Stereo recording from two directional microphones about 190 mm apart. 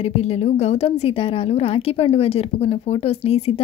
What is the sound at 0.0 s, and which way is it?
A woman's voice, 35° left (ahead or behind).